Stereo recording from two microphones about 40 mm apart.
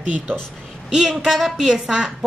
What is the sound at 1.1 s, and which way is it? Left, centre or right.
A man's voice, centre.